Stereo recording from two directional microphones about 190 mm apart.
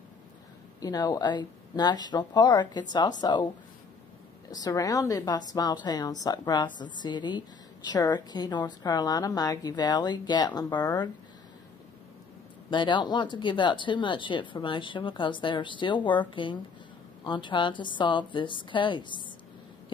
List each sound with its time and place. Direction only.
0.7 s a woman's voice: 20° left (ahead or behind)
4.5 s a woman's voice: 20° left (ahead or behind)
12.6 s a woman's voice: 25° left (ahead or behind)